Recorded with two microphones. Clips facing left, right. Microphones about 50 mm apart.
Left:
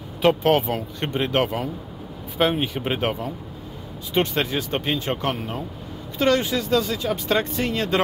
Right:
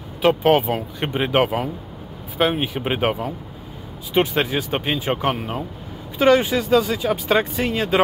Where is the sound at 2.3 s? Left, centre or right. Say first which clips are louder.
Right 1 dB; centre.